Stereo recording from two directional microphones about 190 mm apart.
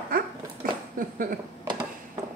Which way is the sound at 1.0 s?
45° right (ahead or behind).